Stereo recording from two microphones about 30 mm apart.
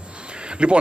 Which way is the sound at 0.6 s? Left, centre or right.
Right.